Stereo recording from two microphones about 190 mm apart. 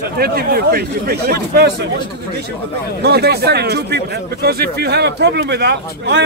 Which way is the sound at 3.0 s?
60° right (ahead or behind).